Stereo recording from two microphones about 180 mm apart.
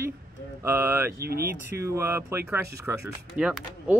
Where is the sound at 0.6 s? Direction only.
10° right (ahead or behind).